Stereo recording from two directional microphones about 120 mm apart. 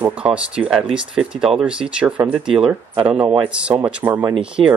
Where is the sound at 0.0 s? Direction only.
10° right (ahead or behind).